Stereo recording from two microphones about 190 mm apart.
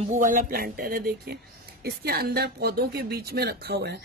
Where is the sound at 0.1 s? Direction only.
45° right (ahead or behind).